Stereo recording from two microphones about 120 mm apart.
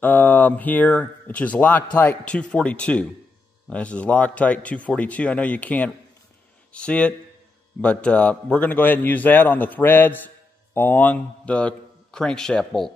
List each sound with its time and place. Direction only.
0.0 s a man's voice: 15° left (ahead or behind)